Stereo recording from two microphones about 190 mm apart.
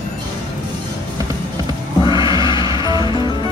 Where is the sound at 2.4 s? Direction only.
25° left (ahead or behind).